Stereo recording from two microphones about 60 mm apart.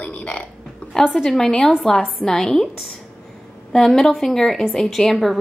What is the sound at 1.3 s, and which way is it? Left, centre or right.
A woman's voice, centre.